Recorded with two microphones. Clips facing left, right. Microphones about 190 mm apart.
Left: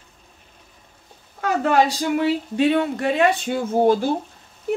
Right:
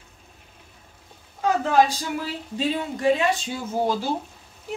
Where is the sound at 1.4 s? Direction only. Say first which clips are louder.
Left 1 dB; 70° left (ahead or behind).